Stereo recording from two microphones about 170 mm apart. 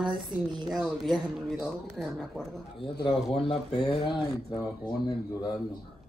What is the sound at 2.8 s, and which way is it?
Speech, 30° left (ahead or behind).